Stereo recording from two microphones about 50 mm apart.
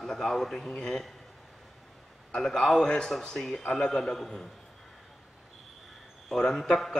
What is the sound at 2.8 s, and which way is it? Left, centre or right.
A man's voice, centre.